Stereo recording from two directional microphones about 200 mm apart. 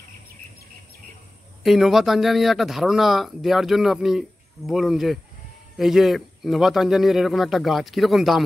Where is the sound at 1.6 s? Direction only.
Centre (ahead or behind).